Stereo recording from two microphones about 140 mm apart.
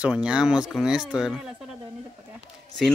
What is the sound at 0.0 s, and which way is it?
Speech, 5° right (ahead or behind).